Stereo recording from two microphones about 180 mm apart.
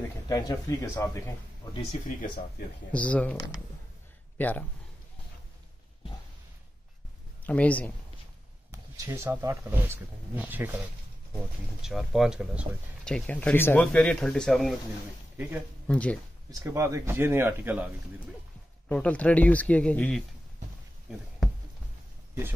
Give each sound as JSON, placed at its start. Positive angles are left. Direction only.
{"t": 0.3, "sound": "speech", "side_deg": 20}
{"t": 1.9, "sound": "speech", "side_deg": 40}
{"t": 2.9, "sound": "speech", "side_deg": 5}
{"t": 4.4, "sound": "speech", "side_deg": 10}
{"t": 7.4, "sound": "speech", "side_deg": 10}
{"t": 8.7, "sound": "speech", "side_deg": -15}
{"t": 11.8, "sound": "speech", "side_deg": 0}
{"t": 15.9, "sound": "speech", "side_deg": 5}
{"t": 16.4, "sound": "speech", "side_deg": -15}
{"t": 18.9, "sound": "speech", "side_deg": 10}